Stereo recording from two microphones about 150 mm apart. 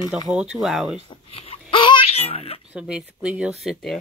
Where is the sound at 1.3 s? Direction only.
40° left (ahead or behind).